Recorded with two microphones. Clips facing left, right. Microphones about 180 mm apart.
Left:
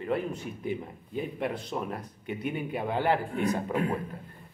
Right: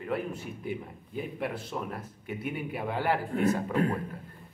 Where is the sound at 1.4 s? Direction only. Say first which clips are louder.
Left 1 dB; 20° left (ahead or behind).